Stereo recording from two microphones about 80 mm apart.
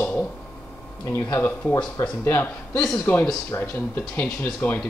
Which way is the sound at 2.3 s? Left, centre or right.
Left.